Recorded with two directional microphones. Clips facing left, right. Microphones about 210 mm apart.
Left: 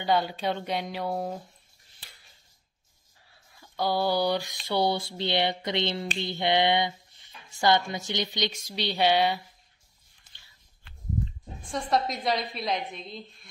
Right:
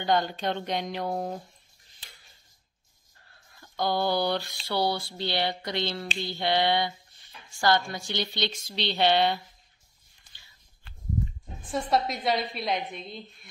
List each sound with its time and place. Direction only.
0.0 s a woman's voice: 5° left (ahead or behind)
3.2 s a sound: 5° left (ahead or behind)
11.6 s a woman's voice: 5° right (ahead or behind)